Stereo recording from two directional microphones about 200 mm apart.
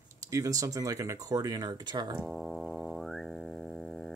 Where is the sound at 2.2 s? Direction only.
Centre (ahead or behind).